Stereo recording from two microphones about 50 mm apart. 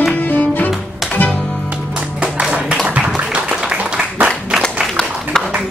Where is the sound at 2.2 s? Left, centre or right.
Centre.